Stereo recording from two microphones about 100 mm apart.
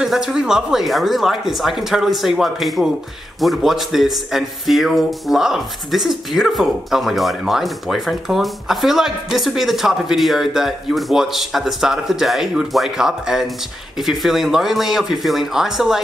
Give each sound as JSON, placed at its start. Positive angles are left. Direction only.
{"t": 0.0, "sound": "a man's voice", "side_deg": -5}